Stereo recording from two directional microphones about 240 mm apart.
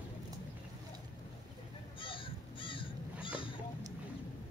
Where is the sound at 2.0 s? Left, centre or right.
Left.